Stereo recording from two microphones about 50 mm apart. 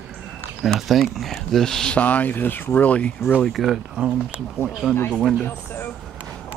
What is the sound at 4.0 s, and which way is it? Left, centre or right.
Speech, right.